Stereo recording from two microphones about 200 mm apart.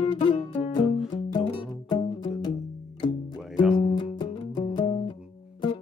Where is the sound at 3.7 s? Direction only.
25° left (ahead or behind).